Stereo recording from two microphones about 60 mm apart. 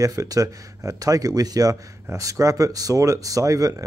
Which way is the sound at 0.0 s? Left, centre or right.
Right.